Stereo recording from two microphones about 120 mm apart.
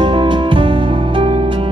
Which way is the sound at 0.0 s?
45° right (ahead or behind).